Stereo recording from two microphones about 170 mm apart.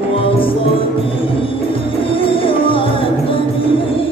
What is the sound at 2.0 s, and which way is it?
Music, 30° left (ahead or behind).